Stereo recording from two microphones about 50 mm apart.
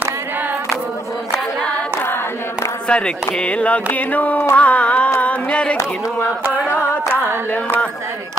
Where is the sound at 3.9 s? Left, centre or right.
Left.